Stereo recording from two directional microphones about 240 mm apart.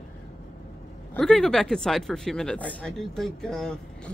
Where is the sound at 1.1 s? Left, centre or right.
Centre.